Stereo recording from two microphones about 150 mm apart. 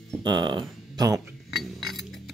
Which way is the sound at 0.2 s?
30° right (ahead or behind).